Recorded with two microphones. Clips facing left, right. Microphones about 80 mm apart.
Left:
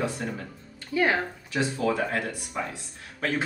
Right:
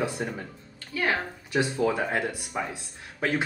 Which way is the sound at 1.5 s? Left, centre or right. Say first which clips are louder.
Right 2 dB; centre.